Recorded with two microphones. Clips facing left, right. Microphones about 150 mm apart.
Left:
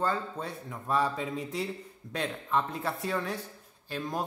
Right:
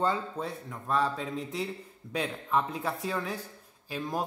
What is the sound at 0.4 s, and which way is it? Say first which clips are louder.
Speech: right 2 dB; 5° left (ahead or behind).